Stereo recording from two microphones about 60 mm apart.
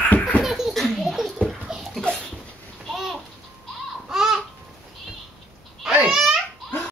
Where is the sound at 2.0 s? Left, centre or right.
Centre.